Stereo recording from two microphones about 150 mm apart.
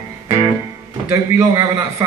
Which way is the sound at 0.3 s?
20° right (ahead or behind).